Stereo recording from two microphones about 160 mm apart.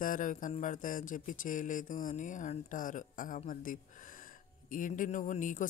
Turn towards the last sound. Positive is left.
turn(degrees=50)  # may be behind; listen again after turning